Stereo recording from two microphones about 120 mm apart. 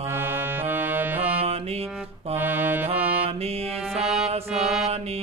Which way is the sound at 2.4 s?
15° right (ahead or behind).